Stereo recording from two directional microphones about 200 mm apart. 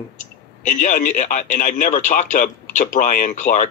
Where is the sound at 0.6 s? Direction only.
40° left (ahead or behind).